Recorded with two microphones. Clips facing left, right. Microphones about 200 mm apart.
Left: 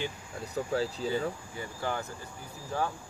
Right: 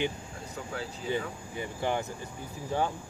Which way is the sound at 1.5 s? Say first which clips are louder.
Right 3 dB; 20° right (ahead or behind).